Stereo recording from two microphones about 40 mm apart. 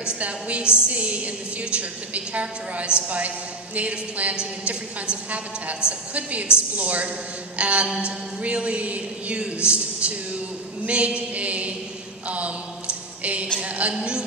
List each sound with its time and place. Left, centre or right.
0.2 s a woman's voice: right
4.4 s a woman's voice: right
5.8 s a woman's voice: left
6.5 s a woman's voice: right